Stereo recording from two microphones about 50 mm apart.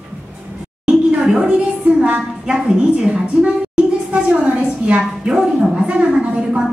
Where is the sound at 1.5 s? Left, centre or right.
Right.